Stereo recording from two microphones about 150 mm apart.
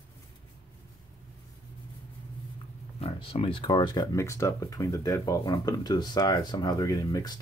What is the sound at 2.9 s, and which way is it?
Speech, 40° left (ahead or behind).